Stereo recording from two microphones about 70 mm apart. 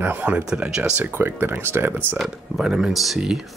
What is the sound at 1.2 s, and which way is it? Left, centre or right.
Speech, right.